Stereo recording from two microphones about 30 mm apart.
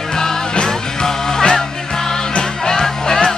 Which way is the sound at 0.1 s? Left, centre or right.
Left.